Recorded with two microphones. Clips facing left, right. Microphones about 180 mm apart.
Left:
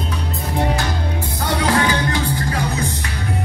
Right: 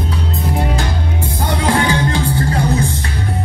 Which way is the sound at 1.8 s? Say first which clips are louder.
Right 3 dB; 25° right (ahead or behind).